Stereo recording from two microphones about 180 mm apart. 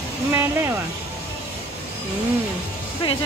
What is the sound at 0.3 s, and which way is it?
Speech, 15° right (ahead or behind).